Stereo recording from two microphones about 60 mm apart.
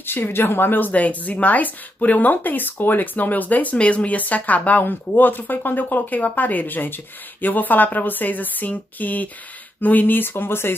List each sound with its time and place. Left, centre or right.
0.0 s speech: left